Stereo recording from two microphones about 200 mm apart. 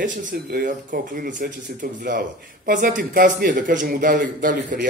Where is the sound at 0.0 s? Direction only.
40° right (ahead or behind).